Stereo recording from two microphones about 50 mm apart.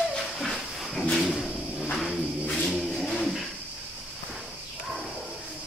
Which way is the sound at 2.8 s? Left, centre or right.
Centre.